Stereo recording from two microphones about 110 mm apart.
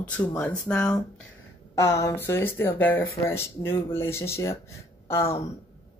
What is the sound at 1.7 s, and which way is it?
Speech, 30° left (ahead or behind).